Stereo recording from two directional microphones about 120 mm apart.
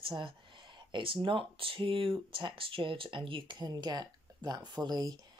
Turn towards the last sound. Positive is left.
turn(degrees=-35)  # may be behind; listen again after turning